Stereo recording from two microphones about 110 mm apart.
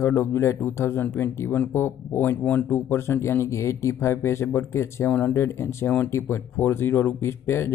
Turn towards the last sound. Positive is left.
turn(degrees=20)  # may be behind; listen again after turning